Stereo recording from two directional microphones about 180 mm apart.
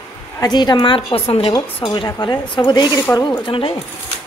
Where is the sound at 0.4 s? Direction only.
25° left (ahead or behind).